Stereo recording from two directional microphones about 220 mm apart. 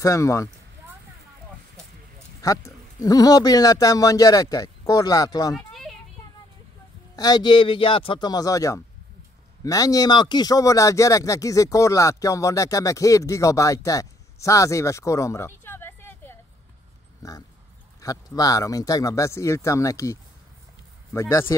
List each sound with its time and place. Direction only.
0.0 s speech: 15° left (ahead or behind)
2.4 s speech: 15° left (ahead or behind)
7.2 s speech: 20° left (ahead or behind)